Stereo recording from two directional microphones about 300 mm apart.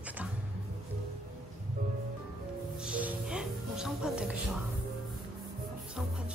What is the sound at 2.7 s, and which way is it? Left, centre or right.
Music, centre.